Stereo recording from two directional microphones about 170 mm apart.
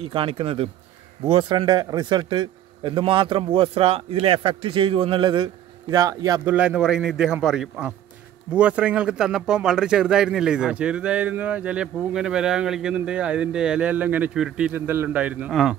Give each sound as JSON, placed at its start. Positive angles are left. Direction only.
{"t": 0.0, "sound": "speech", "side_deg": -30}
{"t": 6.5, "sound": "speech", "side_deg": -5}